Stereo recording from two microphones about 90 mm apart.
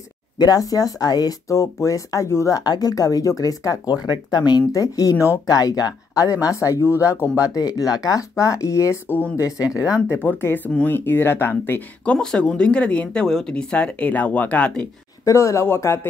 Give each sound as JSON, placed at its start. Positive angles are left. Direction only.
{"t": 0.4, "sound": "speech", "side_deg": 45}
{"t": 2.5, "sound": "speech", "side_deg": 50}
{"t": 9.7, "sound": "speech", "side_deg": -10}
{"t": 10.0, "sound": "speech", "side_deg": 25}
{"t": 12.0, "sound": "speech", "side_deg": 10}
{"t": 15.2, "sound": "speech", "side_deg": 35}